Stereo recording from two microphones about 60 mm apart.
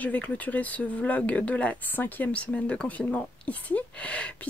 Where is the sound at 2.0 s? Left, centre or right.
Left.